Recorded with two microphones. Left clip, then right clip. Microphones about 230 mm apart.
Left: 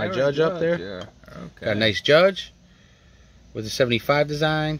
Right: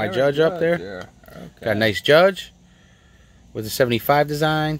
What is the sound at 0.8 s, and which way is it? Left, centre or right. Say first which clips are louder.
Speech: right 1 dB; left.